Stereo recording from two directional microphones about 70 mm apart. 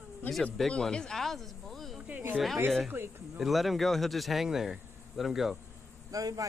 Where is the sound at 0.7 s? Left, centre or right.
Centre.